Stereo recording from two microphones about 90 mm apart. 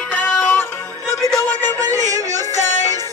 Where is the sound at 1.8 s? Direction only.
40° right (ahead or behind).